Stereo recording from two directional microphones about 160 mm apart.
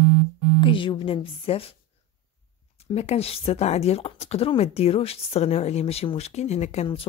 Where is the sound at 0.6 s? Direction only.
30° left (ahead or behind).